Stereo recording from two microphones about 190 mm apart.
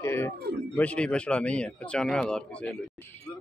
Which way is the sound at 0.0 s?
15° left (ahead or behind).